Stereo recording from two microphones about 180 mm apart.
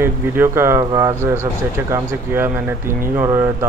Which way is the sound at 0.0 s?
15° right (ahead or behind).